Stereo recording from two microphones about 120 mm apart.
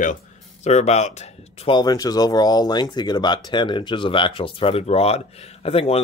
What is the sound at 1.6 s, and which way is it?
Speech, 35° left (ahead or behind).